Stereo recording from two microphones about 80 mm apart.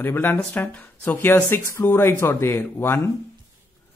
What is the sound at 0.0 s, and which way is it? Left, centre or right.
Speech, left.